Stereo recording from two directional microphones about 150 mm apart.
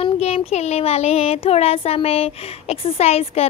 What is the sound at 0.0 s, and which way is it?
Child singing, 45° left (ahead or behind).